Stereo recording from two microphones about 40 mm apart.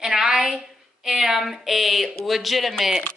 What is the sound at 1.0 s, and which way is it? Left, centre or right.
Speech, centre.